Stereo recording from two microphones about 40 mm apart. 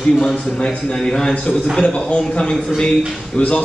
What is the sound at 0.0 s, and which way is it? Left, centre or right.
A man's voice, left.